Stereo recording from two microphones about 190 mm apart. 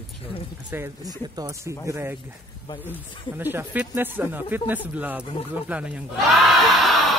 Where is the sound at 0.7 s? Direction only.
15° right (ahead or behind).